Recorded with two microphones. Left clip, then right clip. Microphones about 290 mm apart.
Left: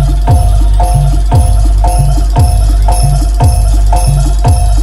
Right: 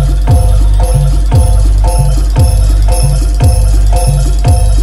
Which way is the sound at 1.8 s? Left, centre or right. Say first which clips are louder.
Left 3 dB; centre.